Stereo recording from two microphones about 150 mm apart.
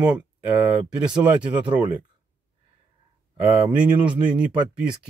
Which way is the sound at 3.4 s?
10° right (ahead or behind).